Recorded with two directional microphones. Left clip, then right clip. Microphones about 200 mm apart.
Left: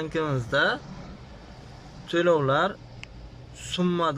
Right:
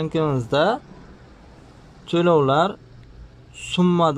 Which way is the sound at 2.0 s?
15° right (ahead or behind).